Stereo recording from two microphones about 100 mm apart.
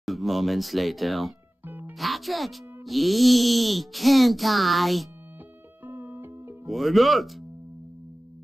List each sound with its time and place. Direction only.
0.0 s speech: centre (ahead or behind)
1.7 s music: 20° right (ahead or behind)
2.0 s speech: centre (ahead or behind)
5.9 s music: 20° right (ahead or behind)
6.6 s speech: centre (ahead or behind)